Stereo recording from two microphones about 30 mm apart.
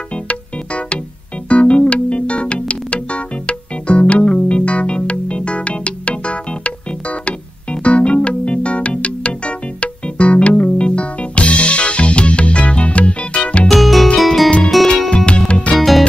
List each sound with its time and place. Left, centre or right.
0.3 s music: left
13.7 s music: centre
15.1 s music: left
15.7 s music: centre